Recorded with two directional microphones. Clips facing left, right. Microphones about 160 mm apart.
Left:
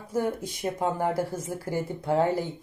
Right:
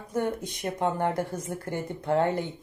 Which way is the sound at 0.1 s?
5° left (ahead or behind).